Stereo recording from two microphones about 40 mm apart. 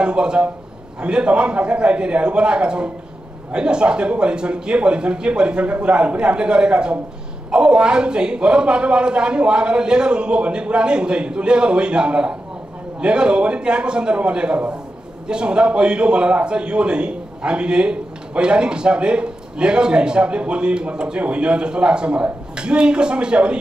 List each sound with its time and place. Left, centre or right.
0.0 s a man's voice: right